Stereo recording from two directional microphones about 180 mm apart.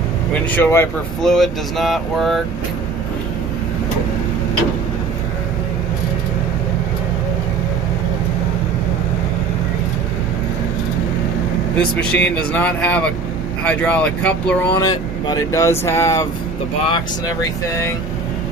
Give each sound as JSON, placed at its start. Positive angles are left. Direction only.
{"t": 0.5, "sound": "speech", "side_deg": 10}
{"t": 1.2, "sound": "speech", "side_deg": 0}
{"t": 11.7, "sound": "speech", "side_deg": 5}
{"t": 14.8, "sound": "speech", "side_deg": 20}